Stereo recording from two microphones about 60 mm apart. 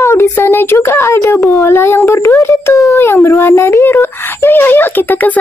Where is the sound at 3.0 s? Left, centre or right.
Left.